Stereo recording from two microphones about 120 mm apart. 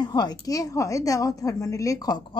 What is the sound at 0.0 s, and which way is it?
A woman's voice, 35° left (ahead or behind).